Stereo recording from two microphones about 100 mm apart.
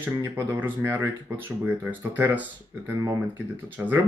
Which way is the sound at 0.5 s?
20° right (ahead or behind).